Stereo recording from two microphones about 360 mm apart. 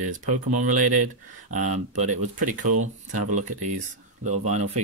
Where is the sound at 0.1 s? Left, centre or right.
Right.